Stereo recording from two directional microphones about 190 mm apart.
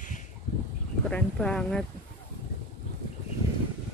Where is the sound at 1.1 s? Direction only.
5° left (ahead or behind).